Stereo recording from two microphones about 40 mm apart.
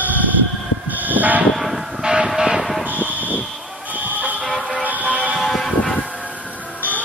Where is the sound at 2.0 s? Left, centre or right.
Centre.